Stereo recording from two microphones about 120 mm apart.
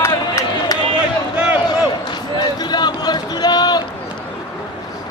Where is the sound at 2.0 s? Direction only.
35° left (ahead or behind).